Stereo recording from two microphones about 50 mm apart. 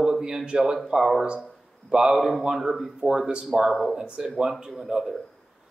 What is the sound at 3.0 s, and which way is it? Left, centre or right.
Speech, centre.